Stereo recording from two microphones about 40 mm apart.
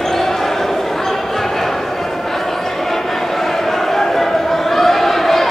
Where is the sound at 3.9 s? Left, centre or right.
Centre.